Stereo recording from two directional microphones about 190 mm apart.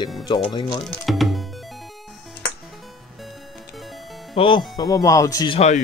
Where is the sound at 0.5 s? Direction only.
25° left (ahead or behind).